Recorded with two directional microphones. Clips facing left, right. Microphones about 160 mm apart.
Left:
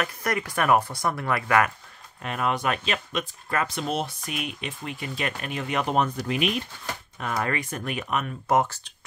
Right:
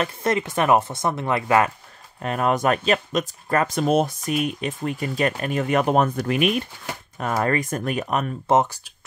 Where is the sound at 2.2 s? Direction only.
40° right (ahead or behind).